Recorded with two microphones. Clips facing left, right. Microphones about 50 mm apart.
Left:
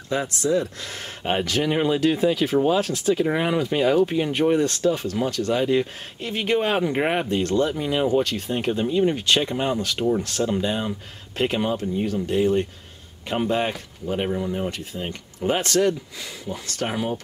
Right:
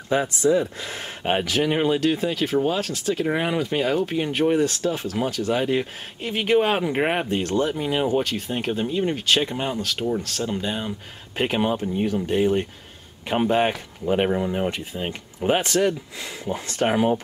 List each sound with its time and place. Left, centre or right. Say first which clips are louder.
0.1 s speech: right 3 dB; centre
11.3 s speech: right 1 dB; centre
16.4 s speech: right 5 dB; right